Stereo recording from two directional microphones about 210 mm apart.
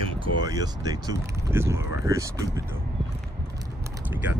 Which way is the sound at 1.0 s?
10° right (ahead or behind).